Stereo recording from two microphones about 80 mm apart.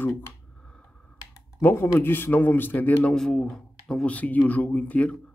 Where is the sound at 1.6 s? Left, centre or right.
Left.